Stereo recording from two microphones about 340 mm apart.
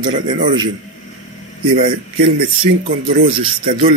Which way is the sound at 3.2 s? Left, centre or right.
Centre.